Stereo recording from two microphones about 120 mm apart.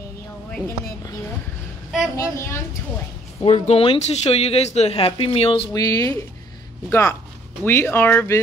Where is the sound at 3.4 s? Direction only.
60° left (ahead or behind).